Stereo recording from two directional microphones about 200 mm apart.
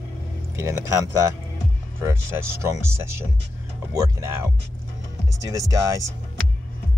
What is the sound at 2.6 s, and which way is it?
Speech, 15° right (ahead or behind).